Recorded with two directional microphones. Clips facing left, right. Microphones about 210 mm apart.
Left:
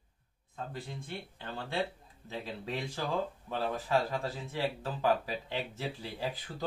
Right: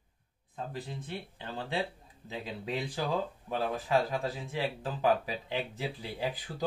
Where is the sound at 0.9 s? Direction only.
20° right (ahead or behind).